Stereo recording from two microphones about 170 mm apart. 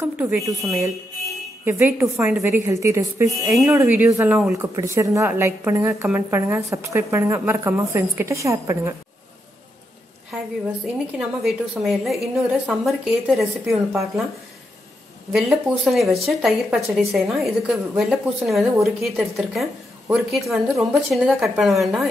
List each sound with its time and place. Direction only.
0.0 s a woman's voice: 10° right (ahead or behind)
11.1 s a woman's voice: 5° right (ahead or behind)
15.3 s a woman's voice: centre (ahead or behind)